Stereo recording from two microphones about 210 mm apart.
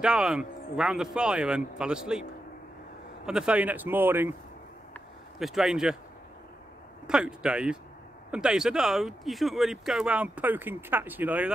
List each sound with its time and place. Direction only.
0.0 s speech: 5° right (ahead or behind)
3.3 s speech: 5° right (ahead or behind)
4.9 s a sound: centre (ahead or behind)
7.1 s speech: 5° right (ahead or behind)